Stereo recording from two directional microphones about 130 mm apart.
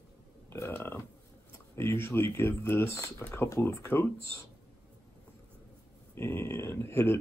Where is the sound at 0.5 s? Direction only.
15° left (ahead or behind).